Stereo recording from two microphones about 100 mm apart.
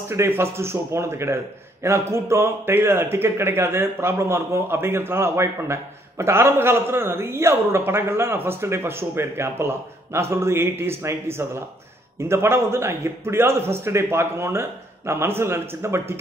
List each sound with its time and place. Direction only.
0.1 s a man's voice: 25° right (ahead or behind)